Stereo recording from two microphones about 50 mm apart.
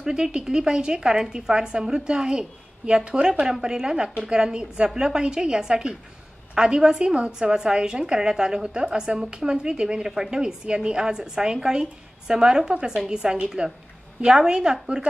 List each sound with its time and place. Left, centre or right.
0.0 s speech: centre